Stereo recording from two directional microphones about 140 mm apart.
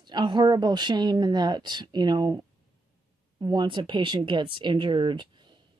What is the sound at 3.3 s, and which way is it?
Speech, 30° right (ahead or behind).